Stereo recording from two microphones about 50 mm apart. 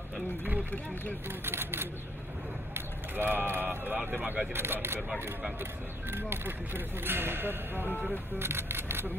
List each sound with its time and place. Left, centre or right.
1.4 s speech: right
4.6 s speech: right
6.1 s speech: right